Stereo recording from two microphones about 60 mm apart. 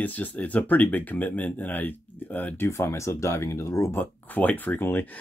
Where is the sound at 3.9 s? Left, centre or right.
Left.